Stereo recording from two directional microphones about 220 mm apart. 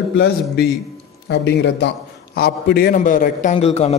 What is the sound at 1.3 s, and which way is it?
A man's voice, 50° left (ahead or behind).